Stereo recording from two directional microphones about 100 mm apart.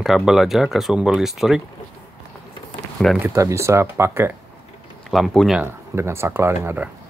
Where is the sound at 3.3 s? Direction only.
30° right (ahead or behind).